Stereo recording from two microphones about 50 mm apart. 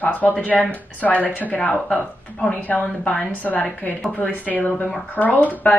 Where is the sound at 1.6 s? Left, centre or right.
Centre.